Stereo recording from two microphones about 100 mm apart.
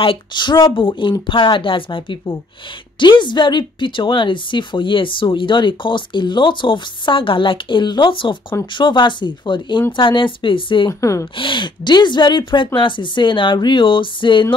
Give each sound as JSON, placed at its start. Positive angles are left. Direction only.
{"t": 0.0, "sound": "a woman's voice", "side_deg": 55}
{"t": 10.9, "sound": "speech", "side_deg": 30}
{"t": 11.3, "sound": "speech", "side_deg": 55}